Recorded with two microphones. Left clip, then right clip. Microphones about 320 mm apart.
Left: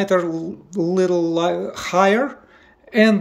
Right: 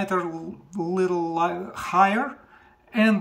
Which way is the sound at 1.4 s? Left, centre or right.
Centre.